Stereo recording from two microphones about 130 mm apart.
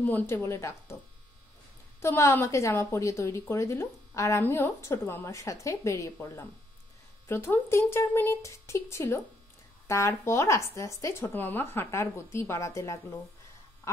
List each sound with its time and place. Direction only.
0.0 s a woman's voice: 15° left (ahead or behind)
2.0 s a woman's voice: 20° left (ahead or behind)